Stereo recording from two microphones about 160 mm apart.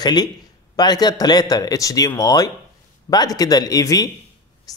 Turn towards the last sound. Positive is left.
turn(degrees=25)  # may be behind; listen again after turning